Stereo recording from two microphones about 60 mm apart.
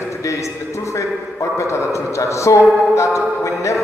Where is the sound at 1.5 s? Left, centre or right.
Left.